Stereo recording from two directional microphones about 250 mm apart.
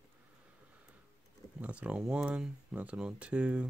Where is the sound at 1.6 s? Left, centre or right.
Centre.